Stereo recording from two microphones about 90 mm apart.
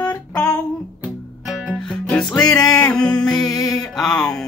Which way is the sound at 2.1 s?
10° left (ahead or behind).